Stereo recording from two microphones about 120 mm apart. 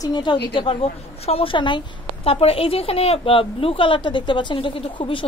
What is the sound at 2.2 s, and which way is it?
A woman's voice, 55° left (ahead or behind).